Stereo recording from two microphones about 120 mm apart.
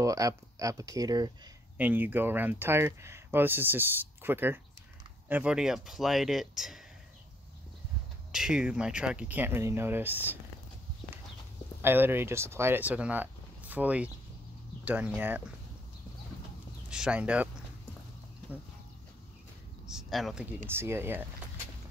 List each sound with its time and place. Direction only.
0.0 s speech: 25° right (ahead or behind)
1.8 s speech: 15° right (ahead or behind)
8.3 s speech: 5° right (ahead or behind)
11.8 s speech: 20° right (ahead or behind)
16.9 s speech: 10° right (ahead or behind)
19.9 s speech: centre (ahead or behind)
20.7 s speech: 20° right (ahead or behind)